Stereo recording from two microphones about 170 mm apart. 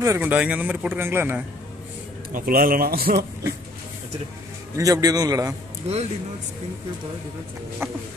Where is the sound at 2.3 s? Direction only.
55° right (ahead or behind).